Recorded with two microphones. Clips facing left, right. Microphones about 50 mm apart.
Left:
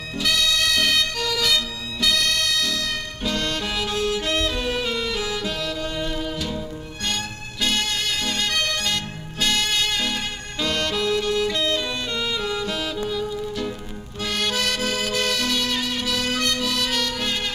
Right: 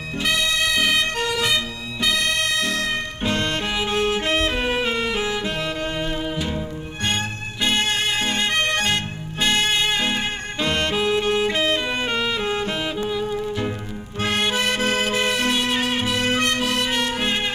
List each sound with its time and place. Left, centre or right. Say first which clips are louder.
0.2 s music: right 1 dB; right
1.0 s music: right 2 dB; right